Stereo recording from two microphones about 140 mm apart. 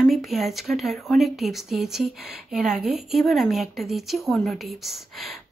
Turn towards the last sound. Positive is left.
turn(degrees=0)  # may be behind; listen again after turning